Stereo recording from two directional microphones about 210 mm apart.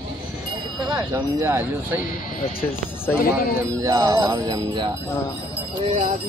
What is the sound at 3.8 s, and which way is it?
Speech, 15° right (ahead or behind).